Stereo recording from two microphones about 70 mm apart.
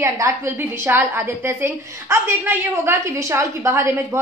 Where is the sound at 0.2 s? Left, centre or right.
Right.